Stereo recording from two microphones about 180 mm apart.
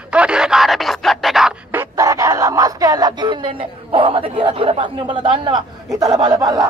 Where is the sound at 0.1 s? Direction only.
5° right (ahead or behind); by 5.6 s 25° right (ahead or behind).